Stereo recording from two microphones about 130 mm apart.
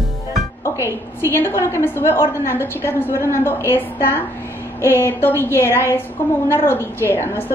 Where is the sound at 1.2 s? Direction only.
20° left (ahead or behind).